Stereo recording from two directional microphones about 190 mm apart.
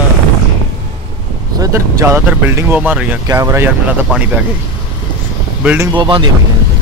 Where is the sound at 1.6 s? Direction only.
15° right (ahead or behind).